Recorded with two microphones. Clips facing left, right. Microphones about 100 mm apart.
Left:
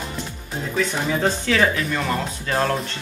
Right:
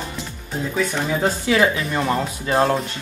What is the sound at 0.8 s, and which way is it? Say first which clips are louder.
Speech: even; 5° right (ahead or behind).